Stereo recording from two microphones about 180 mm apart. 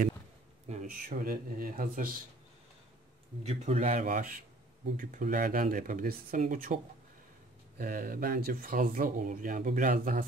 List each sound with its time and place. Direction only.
0.7 s speech: 45° right (ahead or behind)
3.4 s speech: 35° right (ahead or behind)